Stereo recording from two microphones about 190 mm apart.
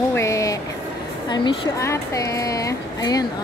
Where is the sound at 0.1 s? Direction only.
15° left (ahead or behind).